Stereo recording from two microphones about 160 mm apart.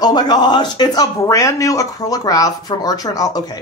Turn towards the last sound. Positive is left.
turn(degrees=25)  # may be behind; listen again after turning